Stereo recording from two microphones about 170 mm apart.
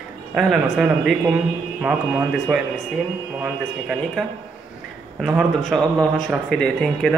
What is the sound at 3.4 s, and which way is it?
A man's voice, 5° right (ahead or behind).